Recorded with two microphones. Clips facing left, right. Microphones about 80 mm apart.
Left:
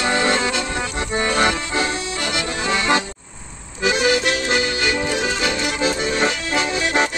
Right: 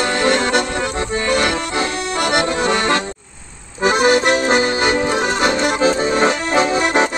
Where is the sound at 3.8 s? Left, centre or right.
Right.